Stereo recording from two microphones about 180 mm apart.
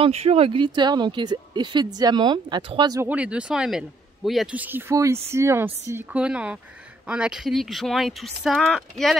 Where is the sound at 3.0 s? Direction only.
10° right (ahead or behind).